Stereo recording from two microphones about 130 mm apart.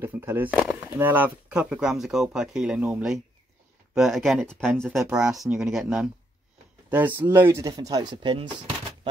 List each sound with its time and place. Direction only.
0.0 s speech: 15° right (ahead or behind)
6.9 s speech: 15° right (ahead or behind); by 8.5 s 35° right (ahead or behind)